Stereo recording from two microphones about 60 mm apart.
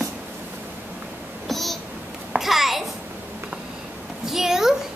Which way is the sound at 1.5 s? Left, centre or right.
Centre.